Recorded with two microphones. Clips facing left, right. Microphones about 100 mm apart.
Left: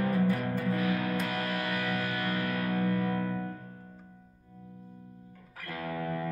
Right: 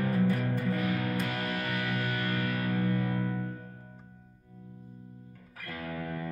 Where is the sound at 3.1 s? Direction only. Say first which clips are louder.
Left 1 dB; 15° right (ahead or behind).